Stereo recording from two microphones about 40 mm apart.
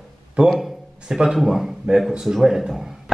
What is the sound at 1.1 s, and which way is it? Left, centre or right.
A man's voice, centre.